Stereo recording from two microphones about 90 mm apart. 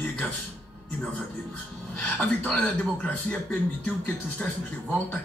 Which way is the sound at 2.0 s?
10° left (ahead or behind).